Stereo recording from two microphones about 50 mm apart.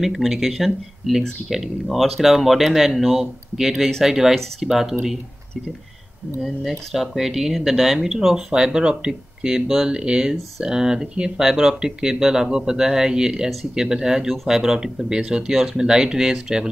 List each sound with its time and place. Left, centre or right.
0.0 s speech: centre
6.4 s speech: centre
8.5 s speech: centre